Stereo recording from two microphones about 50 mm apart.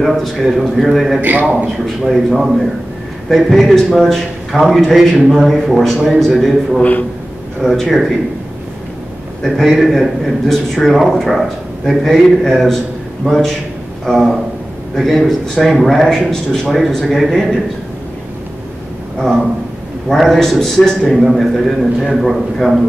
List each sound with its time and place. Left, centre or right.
0.0 s a man's voice: centre
1.4 s a man's voice: right
2.0 s a man's voice: centre
6.8 s a man's voice: left
7.6 s a man's voice: centre
9.4 s a man's voice: centre
19.1 s a man's voice: centre
21.1 s a man's voice: centre